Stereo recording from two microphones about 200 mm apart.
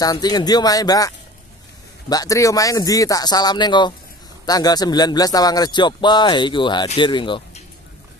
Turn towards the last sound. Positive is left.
turn(degrees=25)  # may be behind; listen again after turning